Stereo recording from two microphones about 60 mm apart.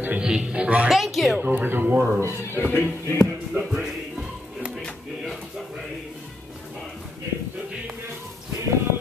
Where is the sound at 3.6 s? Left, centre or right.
Centre.